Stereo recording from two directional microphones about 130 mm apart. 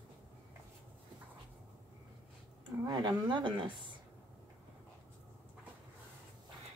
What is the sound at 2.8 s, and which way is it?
Speech, 35° right (ahead or behind).